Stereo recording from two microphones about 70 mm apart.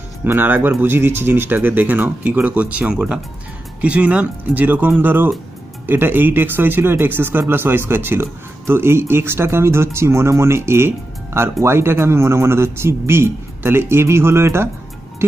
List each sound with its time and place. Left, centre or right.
0.2 s speech: right